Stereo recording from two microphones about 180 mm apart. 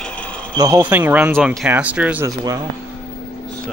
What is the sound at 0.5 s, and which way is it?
Speech, 15° right (ahead or behind).